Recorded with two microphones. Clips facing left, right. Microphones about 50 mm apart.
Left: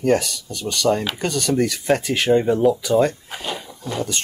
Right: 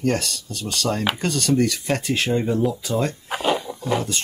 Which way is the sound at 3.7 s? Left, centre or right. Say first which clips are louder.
Right 8 dB; right.